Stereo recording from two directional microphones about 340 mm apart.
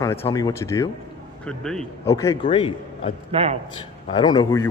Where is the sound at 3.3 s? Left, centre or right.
Centre.